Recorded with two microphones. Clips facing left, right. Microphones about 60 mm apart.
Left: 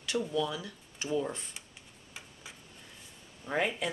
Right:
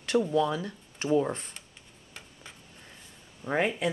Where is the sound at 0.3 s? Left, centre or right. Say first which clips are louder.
Right 6 dB; right.